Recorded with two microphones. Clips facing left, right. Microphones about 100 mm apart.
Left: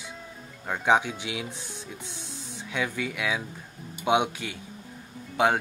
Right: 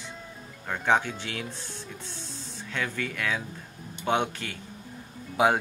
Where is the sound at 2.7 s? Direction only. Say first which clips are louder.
Left 2 dB; 10° left (ahead or behind).